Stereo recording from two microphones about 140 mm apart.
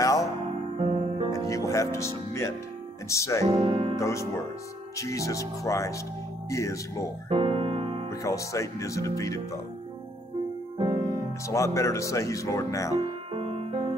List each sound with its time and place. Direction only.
0.0 s music: 25° left (ahead or behind)
0.7 s music: 40° right (ahead or behind)
1.3 s music: 25° left (ahead or behind)
3.1 s speech: 20° left (ahead or behind)
3.4 s speech: 40° right (ahead or behind)
4.0 s speech: 20° left (ahead or behind)
7.2 s music: 45° right (ahead or behind)
8.1 s speech: 20° left (ahead or behind)
11.4 s speech: 20° left (ahead or behind)
13.3 s music: 45° right (ahead or behind)